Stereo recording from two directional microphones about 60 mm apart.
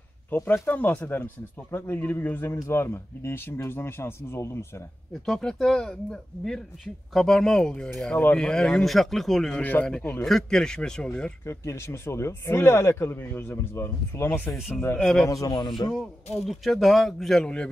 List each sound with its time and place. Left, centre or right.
0.5 s speech: left
5.2 s speech: centre
9.6 s speech: left
10.2 s speech: centre
11.4 s speech: left
15.0 s speech: centre
15.2 s a man's voice: left
15.7 s speech: centre